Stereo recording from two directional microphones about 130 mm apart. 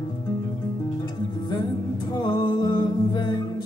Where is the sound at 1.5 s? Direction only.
30° left (ahead or behind).